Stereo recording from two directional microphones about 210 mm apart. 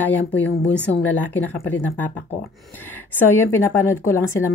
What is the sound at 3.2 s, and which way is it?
Speech, 10° left (ahead or behind).